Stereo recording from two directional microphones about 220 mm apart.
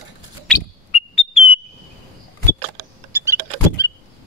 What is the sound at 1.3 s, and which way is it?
Bird, 25° left (ahead or behind).